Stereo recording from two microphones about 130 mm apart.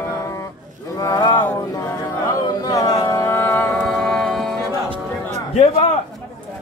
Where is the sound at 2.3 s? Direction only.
30° left (ahead or behind).